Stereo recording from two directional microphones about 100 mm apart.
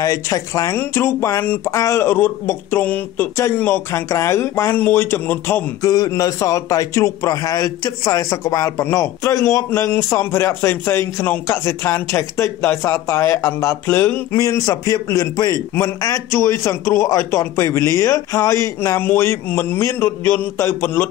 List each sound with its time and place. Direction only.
0.0 s a man's voice: 35° left (ahead or behind)
0.7 s a man's voice: 25° left (ahead or behind)
1.4 s speech: 15° left (ahead or behind)
1.7 s a man's voice: 30° left (ahead or behind)
5.8 s a man's voice: 40° left (ahead or behind); by 14.4 s 20° left (ahead or behind)
14.4 s a man's voice: 35° left (ahead or behind)